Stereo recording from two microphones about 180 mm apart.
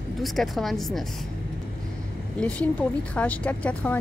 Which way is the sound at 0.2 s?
Centre (ahead or behind).